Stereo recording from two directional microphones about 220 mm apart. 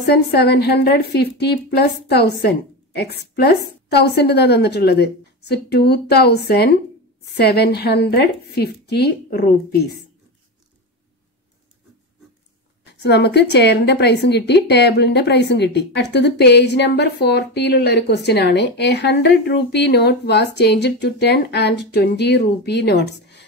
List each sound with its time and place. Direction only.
0.0 s speech: 45° left (ahead or behind)
13.0 s speech: 50° left (ahead or behind)